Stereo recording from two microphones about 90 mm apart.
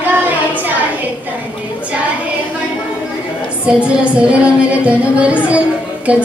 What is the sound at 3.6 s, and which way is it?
Music, 15° right (ahead or behind).